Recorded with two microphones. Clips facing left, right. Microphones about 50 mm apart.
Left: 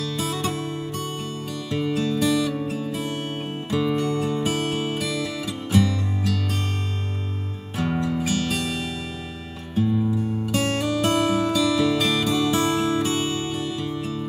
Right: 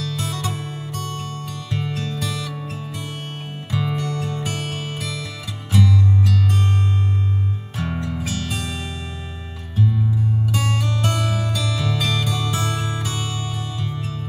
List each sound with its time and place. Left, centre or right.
0.2 s music: centre
3.7 s music: centre
4.1 s music: centre
7.8 s music: centre
11.0 s music: centre